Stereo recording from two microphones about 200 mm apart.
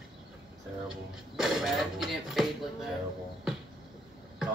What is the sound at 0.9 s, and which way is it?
Speech, centre (ahead or behind).